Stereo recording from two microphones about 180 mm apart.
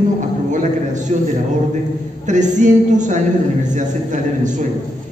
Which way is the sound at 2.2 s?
40° right (ahead or behind).